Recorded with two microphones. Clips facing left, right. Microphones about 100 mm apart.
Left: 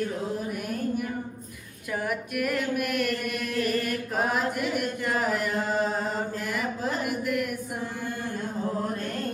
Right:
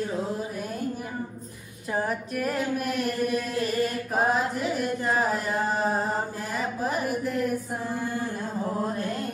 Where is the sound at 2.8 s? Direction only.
60° left (ahead or behind).